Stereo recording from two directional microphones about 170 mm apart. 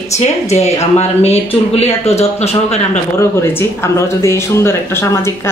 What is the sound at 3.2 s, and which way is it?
Speech, 15° left (ahead or behind).